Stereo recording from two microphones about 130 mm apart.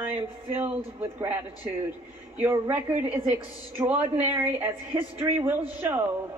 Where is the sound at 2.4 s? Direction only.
15° right (ahead or behind).